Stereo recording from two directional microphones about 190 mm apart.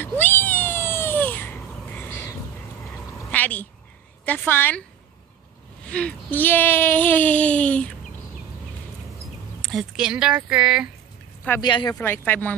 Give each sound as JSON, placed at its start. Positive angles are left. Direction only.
{"t": 0.0, "sound": "cat", "side_deg": 10}
{"t": 3.2, "sound": "a sound", "side_deg": 10}
{"t": 4.3, "sound": "speech", "side_deg": 10}
{"t": 5.9, "sound": "speech", "side_deg": 5}
{"t": 9.6, "sound": "speech", "side_deg": 0}
{"t": 11.6, "sound": "speech", "side_deg": 20}
{"t": 12.0, "sound": "speech", "side_deg": 10}